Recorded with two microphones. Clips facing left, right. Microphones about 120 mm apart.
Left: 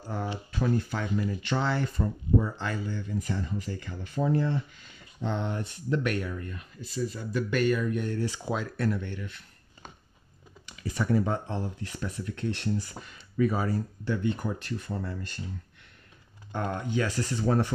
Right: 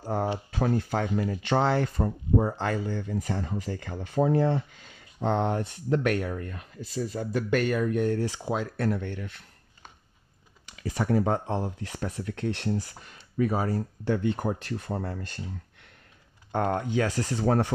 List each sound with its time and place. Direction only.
0.0 s speech: 50° right (ahead or behind)
1.2 s speech: 90° right
2.0 s speech: 50° right (ahead or behind)
2.6 s speech: 70° right (ahead or behind); by 4.6 s 90° right
5.2 s speech: 60° right (ahead or behind)
8.5 s speech: 45° right (ahead or behind)
11.0 s speech: 60° right (ahead or behind)
11.9 s speech: 80° right
13.0 s a sound: 50° right (ahead or behind)
13.7 s speech: 55° right (ahead or behind)
16.5 s speech: 60° right (ahead or behind); by 17.6 s 90° right